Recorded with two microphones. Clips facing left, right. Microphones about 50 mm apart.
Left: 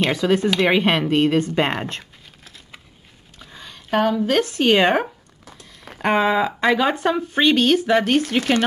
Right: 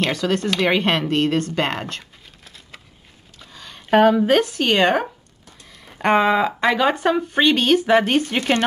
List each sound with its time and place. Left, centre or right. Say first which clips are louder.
0.0 s speech: left 2 dB; centre
2.4 s a sound: right 1 dB; centre
3.9 s a woman's voice: right 5 dB; right
4.3 s speech: right 2 dB; centre
4.6 s speech: left 1 dB; centre